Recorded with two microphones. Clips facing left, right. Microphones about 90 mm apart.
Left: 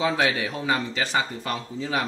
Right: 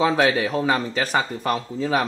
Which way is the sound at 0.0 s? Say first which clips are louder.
Right 5 dB; 45° right (ahead or behind).